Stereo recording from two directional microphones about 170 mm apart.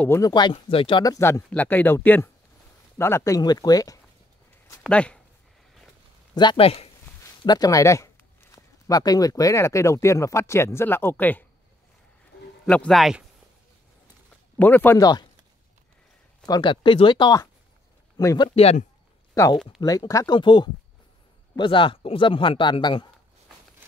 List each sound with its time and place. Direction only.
0.0 s speech: 15° left (ahead or behind)
0.3 s a man's voice: 25° left (ahead or behind)
4.8 s speech: 5° left (ahead or behind)
6.3 s speech: 30° left (ahead or behind)
7.4 s speech: 20° left (ahead or behind)
12.6 s speech: 5° left (ahead or behind)
14.6 s speech: 10° left (ahead or behind)
16.4 s a man's voice: 25° left (ahead or behind)
18.5 s speech: 35° left (ahead or behind)
19.3 s a man's voice: 20° left (ahead or behind)
23.8 s a sound: 10° right (ahead or behind)